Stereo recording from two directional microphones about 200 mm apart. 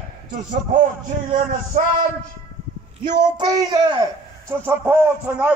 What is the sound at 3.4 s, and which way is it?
Speech, 20° right (ahead or behind).